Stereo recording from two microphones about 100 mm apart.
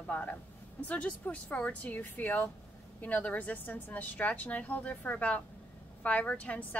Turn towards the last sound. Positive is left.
turn(degrees=15)  # may be behind; listen again after turning